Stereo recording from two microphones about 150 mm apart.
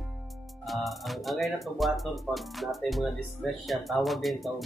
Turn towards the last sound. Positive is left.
turn(degrees=0)  # may be behind; listen again after turning